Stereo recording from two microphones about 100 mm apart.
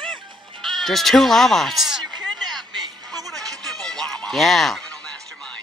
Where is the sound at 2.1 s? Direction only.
45° right (ahead or behind).